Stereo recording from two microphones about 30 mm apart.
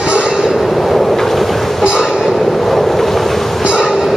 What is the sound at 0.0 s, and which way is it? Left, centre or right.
Train, right.